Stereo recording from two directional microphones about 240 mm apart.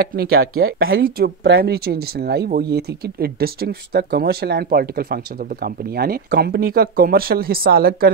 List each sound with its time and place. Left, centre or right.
0.0 s speech: right
0.7 s speech: right
1.1 s speech: right